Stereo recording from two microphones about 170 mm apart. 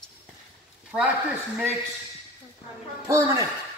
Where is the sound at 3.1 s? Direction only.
20° right (ahead or behind).